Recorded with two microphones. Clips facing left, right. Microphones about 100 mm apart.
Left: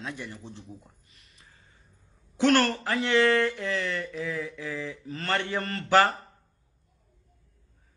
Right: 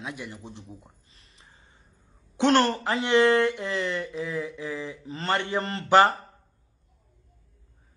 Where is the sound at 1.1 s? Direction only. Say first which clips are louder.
Right 2 dB; 30° right (ahead or behind).